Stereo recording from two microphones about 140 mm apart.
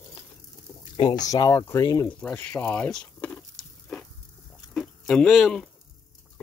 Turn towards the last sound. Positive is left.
turn(degrees=5)  # may be behind; listen again after turning